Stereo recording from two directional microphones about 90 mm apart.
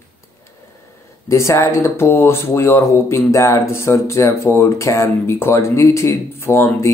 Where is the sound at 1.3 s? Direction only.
30° left (ahead or behind).